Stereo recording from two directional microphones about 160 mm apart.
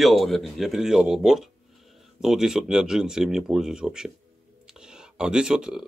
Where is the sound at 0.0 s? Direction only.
Centre (ahead or behind).